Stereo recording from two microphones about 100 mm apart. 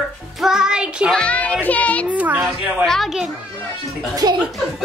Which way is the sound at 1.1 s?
10° left (ahead or behind).